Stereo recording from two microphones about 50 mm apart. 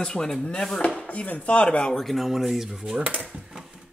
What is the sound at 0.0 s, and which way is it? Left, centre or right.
Chopping, centre.